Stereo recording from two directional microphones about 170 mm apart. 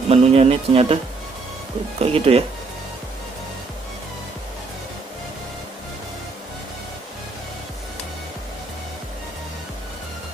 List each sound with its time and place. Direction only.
0.1 s speech: 35° right (ahead or behind)
2.0 s speech: 35° right (ahead or behind)